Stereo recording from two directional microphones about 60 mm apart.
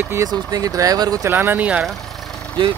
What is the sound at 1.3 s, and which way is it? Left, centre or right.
Speech, right.